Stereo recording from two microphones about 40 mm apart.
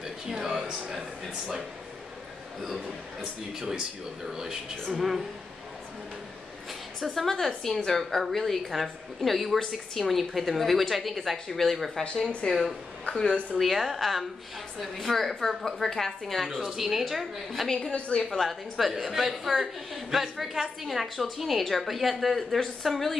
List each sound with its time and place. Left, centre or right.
3.2 s speech: centre
4.9 s a woman's voice: centre
7.0 s a woman's voice: centre
12.4 s a woman's voice: left
13.6 s a woman's voice: centre
16.4 s a woman's voice: centre
17.6 s a woman's voice: centre
17.9 s a woman's voice: left
18.3 s a woman's voice: centre